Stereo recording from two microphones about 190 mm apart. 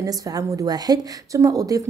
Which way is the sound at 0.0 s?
20° right (ahead or behind).